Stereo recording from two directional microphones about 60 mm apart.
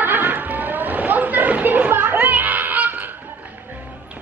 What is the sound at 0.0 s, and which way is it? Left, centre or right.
Chatter, right.